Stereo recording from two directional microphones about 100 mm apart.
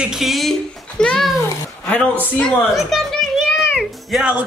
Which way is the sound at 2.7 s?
Centre (ahead or behind).